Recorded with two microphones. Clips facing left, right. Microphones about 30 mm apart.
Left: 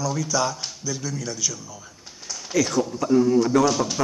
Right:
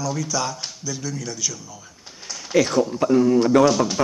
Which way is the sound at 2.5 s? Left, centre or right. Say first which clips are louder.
Right 4 dB; right.